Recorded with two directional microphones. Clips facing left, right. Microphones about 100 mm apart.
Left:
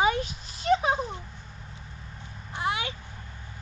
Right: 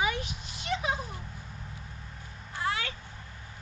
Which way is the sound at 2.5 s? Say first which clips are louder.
Left 3 dB; 15° left (ahead or behind).